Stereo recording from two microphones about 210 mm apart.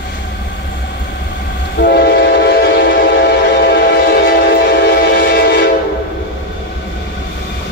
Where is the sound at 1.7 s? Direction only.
50° left (ahead or behind).